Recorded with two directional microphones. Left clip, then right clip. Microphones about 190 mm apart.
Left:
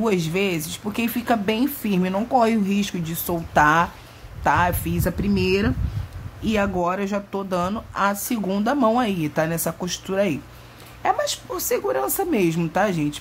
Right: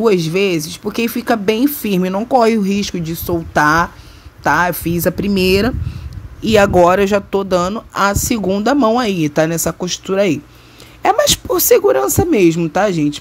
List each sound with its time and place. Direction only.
0.0 s speech: 30° right (ahead or behind)